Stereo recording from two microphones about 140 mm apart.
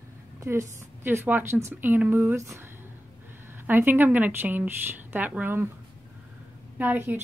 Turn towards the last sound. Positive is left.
turn(degrees=-15)  # may be behind; listen again after turning